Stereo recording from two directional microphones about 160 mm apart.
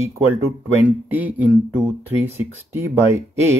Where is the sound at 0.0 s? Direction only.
15° right (ahead or behind).